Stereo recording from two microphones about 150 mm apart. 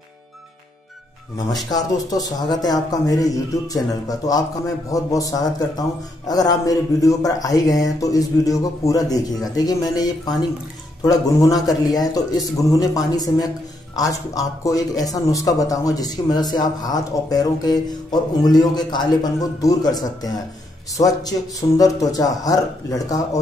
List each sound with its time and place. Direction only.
1.5 s a man's voice: 25° left (ahead or behind)